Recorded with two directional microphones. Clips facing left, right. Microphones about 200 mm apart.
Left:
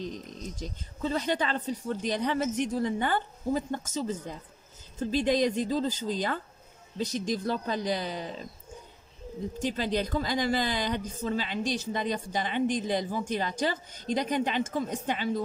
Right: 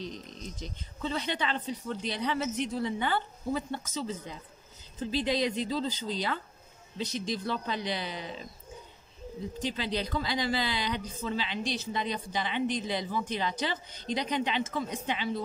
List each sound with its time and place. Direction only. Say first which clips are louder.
0.6 s a woman's voice: left 3 dB; 45° left (ahead or behind)
9.6 s a woman's voice: left 4 dB; 45° left (ahead or behind)